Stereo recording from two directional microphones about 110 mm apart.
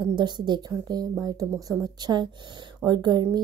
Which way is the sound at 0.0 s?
45° right (ahead or behind).